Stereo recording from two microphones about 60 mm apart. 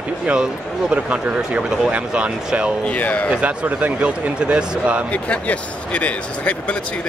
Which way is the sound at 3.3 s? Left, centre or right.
Right.